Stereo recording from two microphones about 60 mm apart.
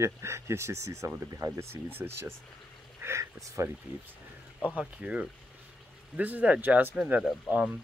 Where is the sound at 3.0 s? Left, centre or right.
Right.